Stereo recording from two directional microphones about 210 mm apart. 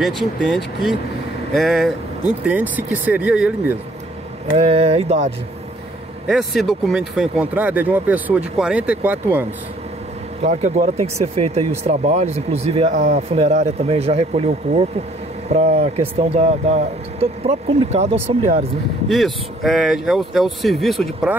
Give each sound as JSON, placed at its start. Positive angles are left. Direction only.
{"t": 0.0, "sound": "speech", "side_deg": 0}
{"t": 4.6, "sound": "speech", "side_deg": -30}
{"t": 6.2, "sound": "speech", "side_deg": 0}
{"t": 10.4, "sound": "speech", "side_deg": -30}
{"t": 15.5, "sound": "speech", "side_deg": -30}
{"t": 19.0, "sound": "speech", "side_deg": 0}